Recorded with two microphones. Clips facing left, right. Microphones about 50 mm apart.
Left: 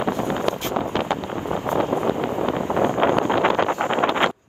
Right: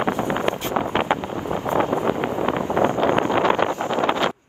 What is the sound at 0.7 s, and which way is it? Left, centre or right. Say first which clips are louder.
Vehicle: right 2 dB; right.